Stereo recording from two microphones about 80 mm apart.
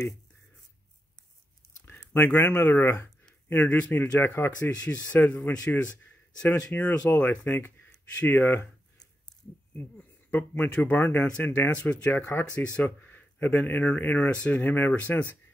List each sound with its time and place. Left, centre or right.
2.1 s speech: left
9.8 s speech: centre